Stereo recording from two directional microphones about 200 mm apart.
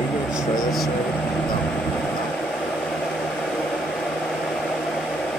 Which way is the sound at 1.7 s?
Centre (ahead or behind).